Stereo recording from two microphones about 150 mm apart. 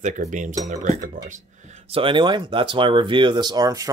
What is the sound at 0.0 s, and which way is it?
Speech, 55° right (ahead or behind).